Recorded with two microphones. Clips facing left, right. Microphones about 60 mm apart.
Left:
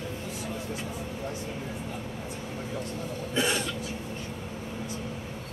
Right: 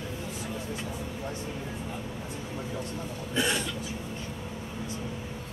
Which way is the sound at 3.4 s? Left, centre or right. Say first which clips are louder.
Left 1 dB; centre.